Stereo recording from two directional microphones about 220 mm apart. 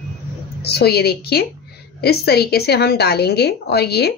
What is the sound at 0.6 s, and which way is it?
A woman's voice, 45° left (ahead or behind).